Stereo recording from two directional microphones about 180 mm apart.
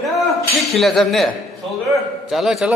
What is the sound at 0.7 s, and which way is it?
Speech, centre (ahead or behind).